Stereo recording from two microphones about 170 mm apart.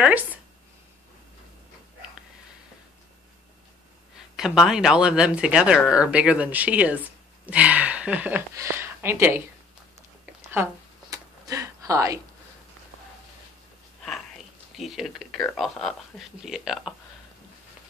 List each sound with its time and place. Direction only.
0.0 s speech: 10° right (ahead or behind)
4.4 s speech: 5° right (ahead or behind)
10.5 s a sound: 15° right (ahead or behind)
14.8 s speech: centre (ahead or behind)